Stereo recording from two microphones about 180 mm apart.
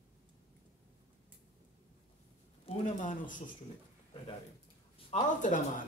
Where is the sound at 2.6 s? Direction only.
45° left (ahead or behind).